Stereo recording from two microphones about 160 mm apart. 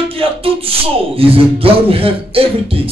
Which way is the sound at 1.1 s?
35° right (ahead or behind).